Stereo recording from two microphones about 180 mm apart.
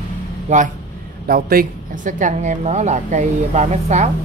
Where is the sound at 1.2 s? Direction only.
55° right (ahead or behind).